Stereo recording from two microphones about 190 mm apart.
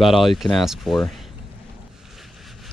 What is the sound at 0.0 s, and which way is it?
Speech, centre (ahead or behind).